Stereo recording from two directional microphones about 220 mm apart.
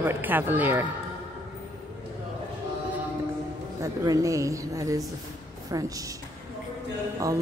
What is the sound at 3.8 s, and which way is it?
A woman's voice, 15° right (ahead or behind).